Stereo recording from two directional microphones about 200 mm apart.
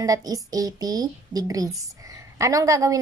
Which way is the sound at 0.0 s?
15° right (ahead or behind).